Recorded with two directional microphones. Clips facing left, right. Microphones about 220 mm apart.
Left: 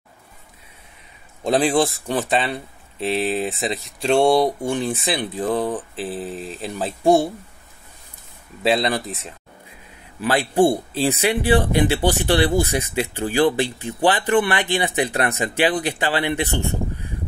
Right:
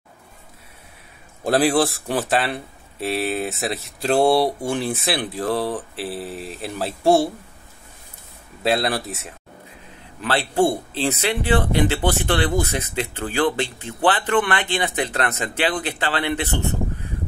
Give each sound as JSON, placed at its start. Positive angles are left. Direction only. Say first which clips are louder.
{"t": 1.4, "sound": "speech", "louder": "even", "side_deg": -5}
{"t": 7.0, "sound": "speech", "louder": "left 1 dB", "side_deg": 15}
{"t": 8.6, "sound": "speech", "louder": "left 1 dB", "side_deg": 0}
{"t": 10.2, "sound": "speech", "louder": "left 2 dB", "side_deg": 15}